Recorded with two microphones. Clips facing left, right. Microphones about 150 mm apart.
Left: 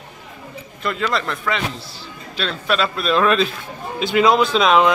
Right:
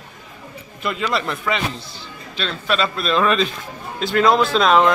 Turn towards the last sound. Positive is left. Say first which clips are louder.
# even
turn(degrees=0)  # may be behind; listen again after turning